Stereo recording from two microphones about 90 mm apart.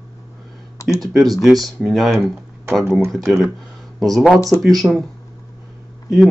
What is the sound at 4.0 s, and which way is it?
Speech, centre (ahead or behind).